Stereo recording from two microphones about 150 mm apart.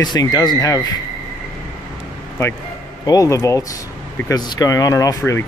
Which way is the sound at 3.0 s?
25° left (ahead or behind).